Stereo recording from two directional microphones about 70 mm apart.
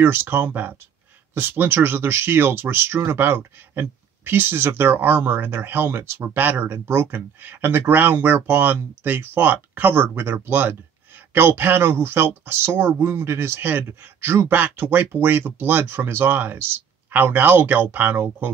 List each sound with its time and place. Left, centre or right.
0.0 s speech: right